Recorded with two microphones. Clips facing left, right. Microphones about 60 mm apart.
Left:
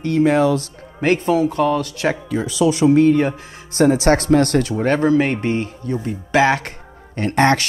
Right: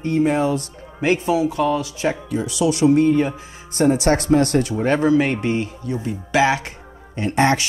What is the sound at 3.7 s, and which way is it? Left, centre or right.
Speech, left.